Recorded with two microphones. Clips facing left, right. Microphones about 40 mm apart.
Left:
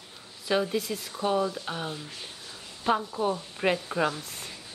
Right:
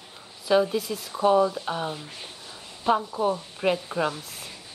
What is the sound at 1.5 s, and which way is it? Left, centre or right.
Speech, centre.